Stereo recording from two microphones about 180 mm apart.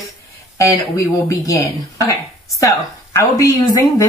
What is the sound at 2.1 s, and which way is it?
Speech, 15° left (ahead or behind).